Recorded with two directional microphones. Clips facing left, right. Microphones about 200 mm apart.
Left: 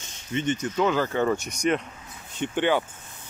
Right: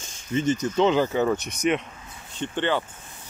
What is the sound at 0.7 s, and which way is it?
Speech, 20° right (ahead or behind).